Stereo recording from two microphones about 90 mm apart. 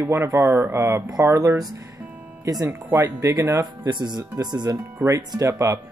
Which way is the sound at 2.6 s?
25° right (ahead or behind).